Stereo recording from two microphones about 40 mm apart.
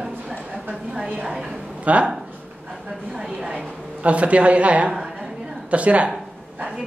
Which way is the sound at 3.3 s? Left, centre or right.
Right.